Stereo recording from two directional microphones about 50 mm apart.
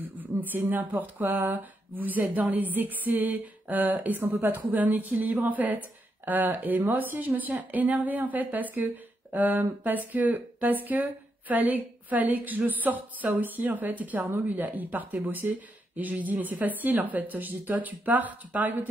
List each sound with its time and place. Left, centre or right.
0.2 s speech: right